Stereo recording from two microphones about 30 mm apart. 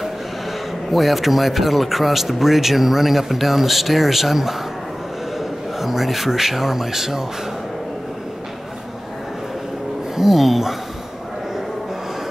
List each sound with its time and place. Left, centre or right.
0.9 s speech: centre
5.8 s speech: centre
10.1 s speech: centre